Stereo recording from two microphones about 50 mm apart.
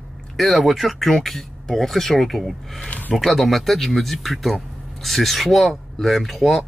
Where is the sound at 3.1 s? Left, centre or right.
Centre.